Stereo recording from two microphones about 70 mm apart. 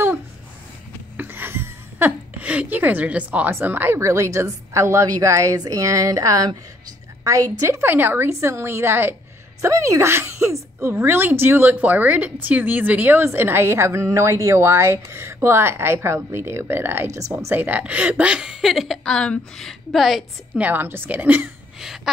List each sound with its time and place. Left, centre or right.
1.1 s a sound: right
3.4 s a woman's voice: right
4.0 s a woman's voice: right
7.6 s a woman's voice: right
7.9 s a woman's voice: right
9.6 s a woman's voice: right
17.6 s a woman's voice: right; by 19.1 s centre
19.1 s speech: centre
19.6 s a woman's voice: centre
20.7 s a woman's voice: right
21.7 s a sound: centre